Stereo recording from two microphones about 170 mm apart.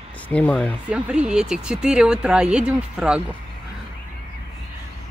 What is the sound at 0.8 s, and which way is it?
Speech, 5° right (ahead or behind).